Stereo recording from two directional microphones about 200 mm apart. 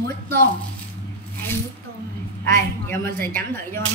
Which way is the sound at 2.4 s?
10° left (ahead or behind).